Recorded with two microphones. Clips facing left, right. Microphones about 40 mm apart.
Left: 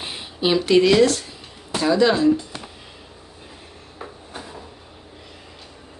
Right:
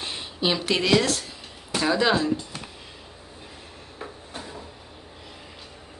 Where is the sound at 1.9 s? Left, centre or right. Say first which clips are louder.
Left 4 dB; centre.